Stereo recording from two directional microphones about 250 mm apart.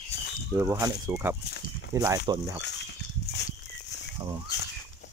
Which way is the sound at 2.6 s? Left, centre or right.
Left.